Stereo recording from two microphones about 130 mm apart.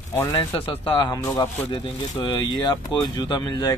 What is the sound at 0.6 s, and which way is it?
Speech, 45° left (ahead or behind).